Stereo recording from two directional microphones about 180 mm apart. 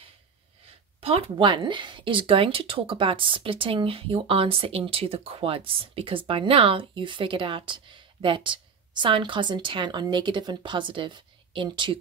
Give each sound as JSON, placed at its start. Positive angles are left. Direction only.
{"t": 1.0, "sound": "speech", "side_deg": -30}